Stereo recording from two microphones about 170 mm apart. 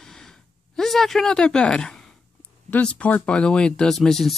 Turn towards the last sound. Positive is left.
turn(degrees=0)  # may be behind; listen again after turning